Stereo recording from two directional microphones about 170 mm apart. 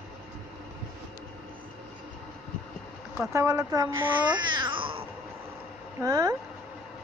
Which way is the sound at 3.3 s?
15° right (ahead or behind).